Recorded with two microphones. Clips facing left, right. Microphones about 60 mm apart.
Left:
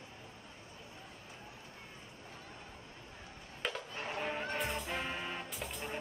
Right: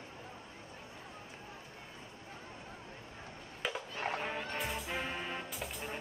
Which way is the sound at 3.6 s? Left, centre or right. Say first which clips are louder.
Right 2 dB; centre.